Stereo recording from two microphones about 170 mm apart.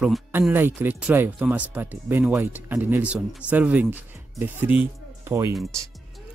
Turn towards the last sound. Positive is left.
turn(degrees=-15)  # may be behind; listen again after turning